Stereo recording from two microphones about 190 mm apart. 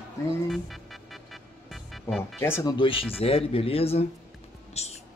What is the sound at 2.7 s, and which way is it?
Speech, 25° left (ahead or behind).